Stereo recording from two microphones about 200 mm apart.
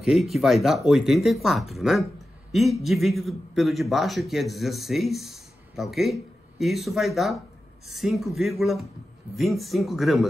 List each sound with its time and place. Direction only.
0.0 s a man's voice: centre (ahead or behind)